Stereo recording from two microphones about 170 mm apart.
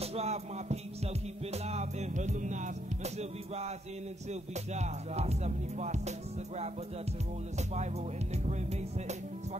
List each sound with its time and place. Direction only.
0.0 s music: 40° right (ahead or behind)
7.5 s music: 40° right (ahead or behind)